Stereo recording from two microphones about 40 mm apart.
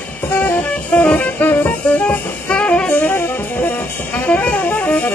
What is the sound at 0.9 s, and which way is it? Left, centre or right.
Music, left.